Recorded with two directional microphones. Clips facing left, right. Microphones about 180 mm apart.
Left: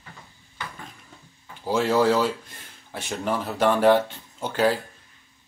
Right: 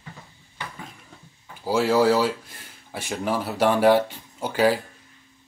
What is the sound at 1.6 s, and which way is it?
Speech, 10° right (ahead or behind).